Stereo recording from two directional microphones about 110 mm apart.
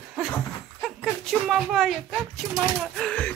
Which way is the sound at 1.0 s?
Centre (ahead or behind).